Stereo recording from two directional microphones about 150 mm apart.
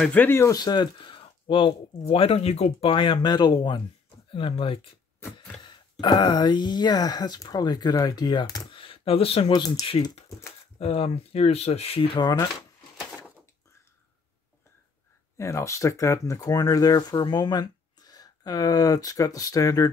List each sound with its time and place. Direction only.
0.0 s speech: 10° left (ahead or behind); by 9.5 s 40° left (ahead or behind)
9.5 s speech: 25° left (ahead or behind)
12.9 s door: centre (ahead or behind)
15.3 s speech: 20° left (ahead or behind)